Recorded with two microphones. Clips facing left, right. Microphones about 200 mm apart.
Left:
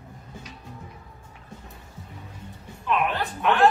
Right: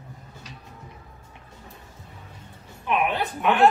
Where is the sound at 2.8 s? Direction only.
20° right (ahead or behind).